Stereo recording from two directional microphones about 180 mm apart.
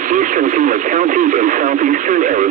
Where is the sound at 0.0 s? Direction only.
45° right (ahead or behind).